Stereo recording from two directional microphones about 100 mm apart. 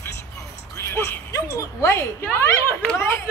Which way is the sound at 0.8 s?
25° left (ahead or behind).